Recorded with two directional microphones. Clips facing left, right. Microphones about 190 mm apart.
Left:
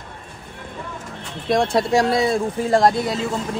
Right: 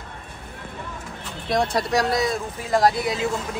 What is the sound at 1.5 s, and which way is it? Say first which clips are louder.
A man's voice: left 4 dB; 25° left (ahead or behind).